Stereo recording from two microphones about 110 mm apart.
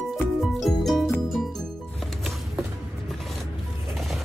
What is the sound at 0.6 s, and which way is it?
Music, centre (ahead or behind).